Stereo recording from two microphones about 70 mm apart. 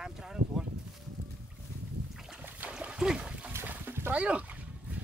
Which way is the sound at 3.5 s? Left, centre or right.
Right.